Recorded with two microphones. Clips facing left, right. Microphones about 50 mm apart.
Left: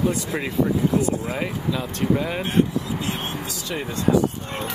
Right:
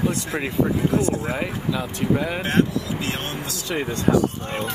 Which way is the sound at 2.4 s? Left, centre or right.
Right.